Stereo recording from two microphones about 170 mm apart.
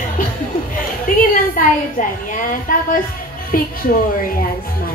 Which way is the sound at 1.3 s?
50° left (ahead or behind).